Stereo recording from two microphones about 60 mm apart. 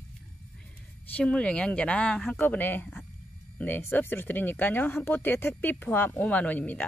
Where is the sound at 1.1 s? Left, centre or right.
Centre.